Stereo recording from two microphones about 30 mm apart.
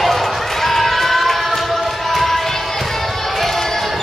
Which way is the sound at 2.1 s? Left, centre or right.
Centre.